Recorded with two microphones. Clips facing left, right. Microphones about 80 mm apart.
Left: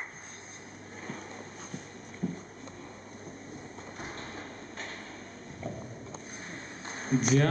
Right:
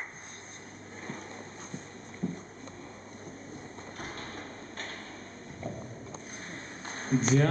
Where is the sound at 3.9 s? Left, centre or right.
Centre.